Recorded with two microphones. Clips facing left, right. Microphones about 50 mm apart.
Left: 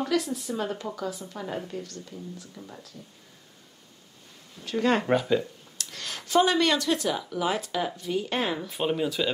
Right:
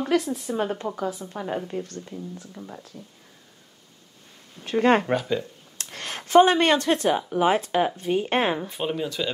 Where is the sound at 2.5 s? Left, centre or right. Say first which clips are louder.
Right 4 dB; centre.